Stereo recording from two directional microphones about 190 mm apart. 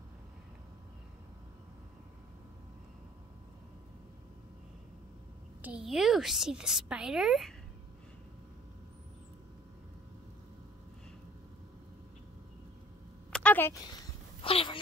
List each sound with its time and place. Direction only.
5.6 s a woman's voice: 5° right (ahead or behind)
13.3 s a sound: 5° left (ahead or behind)
14.4 s speech: 30° left (ahead or behind)